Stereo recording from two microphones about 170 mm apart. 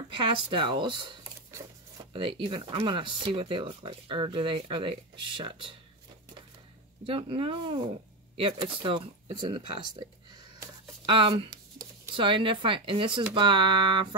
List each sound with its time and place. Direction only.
0.1 s speech: 30° right (ahead or behind)
7.1 s speech: 35° right (ahead or behind)
11.1 s speech: 30° right (ahead or behind)